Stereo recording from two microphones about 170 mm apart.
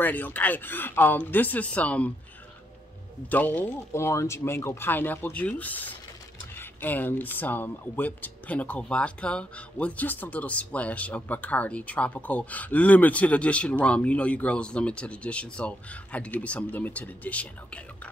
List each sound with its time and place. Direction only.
0.0 s speech: 10° left (ahead or behind)
3.3 s speech: 10° left (ahead or behind)